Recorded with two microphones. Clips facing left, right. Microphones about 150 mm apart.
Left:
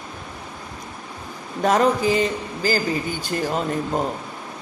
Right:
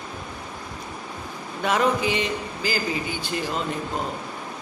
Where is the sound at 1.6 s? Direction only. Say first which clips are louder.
Left 4 dB; 40° left (ahead or behind).